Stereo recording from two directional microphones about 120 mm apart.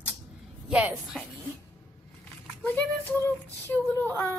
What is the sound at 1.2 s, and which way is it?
Speech, 5° left (ahead or behind).